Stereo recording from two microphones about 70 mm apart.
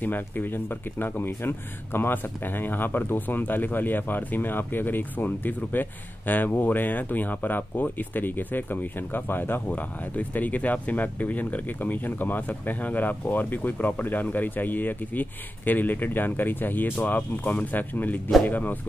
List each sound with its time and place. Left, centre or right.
0.0 s speech: left